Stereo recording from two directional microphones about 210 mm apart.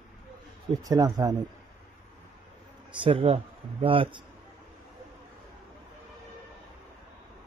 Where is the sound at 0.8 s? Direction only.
20° right (ahead or behind).